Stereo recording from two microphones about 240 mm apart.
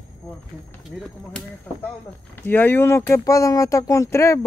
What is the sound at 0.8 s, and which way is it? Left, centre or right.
Speech, centre.